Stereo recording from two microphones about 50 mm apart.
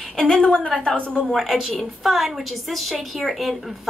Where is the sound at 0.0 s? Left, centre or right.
Centre.